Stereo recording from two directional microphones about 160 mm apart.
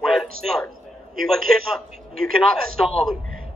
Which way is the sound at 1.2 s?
Centre (ahead or behind).